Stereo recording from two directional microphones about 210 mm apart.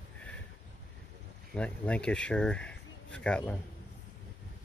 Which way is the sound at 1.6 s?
5° left (ahead or behind).